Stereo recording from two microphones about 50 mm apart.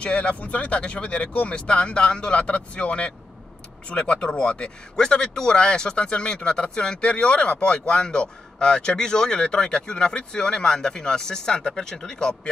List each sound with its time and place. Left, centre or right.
0.0 s speech: left